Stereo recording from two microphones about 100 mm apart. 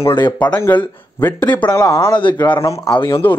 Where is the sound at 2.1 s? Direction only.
50° left (ahead or behind).